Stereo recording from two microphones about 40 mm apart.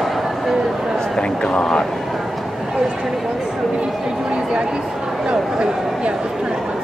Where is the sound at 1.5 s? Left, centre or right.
Left.